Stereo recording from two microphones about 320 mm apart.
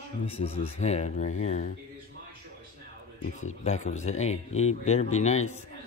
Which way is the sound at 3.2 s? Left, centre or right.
Left.